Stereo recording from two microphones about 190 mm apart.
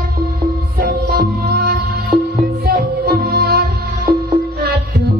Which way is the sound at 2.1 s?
30° right (ahead or behind).